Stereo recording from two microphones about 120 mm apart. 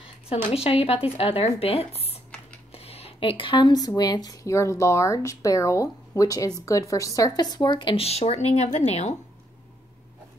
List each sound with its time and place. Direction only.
0.3 s a woman's voice: 55° left (ahead or behind)